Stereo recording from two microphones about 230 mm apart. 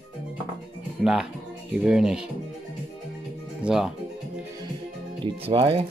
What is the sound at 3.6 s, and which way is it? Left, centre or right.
Speech, centre.